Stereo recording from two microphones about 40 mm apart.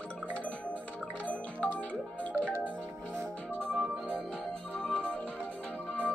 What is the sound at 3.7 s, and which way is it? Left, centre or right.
Music, right.